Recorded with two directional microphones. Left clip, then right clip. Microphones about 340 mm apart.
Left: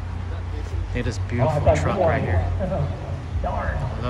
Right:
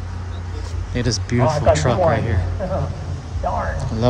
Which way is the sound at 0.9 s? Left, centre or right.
Centre.